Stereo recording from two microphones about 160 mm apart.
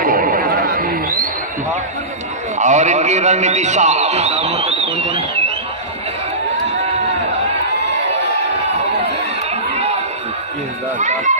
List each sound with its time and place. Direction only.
0.0 s chatter: 60° right (ahead or behind)
2.6 s a man's voice: 50° right (ahead or behind)
11.0 s speech: 50° right (ahead or behind)